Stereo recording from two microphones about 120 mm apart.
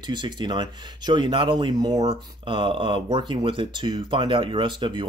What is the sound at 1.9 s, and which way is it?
Speech, 50° right (ahead or behind).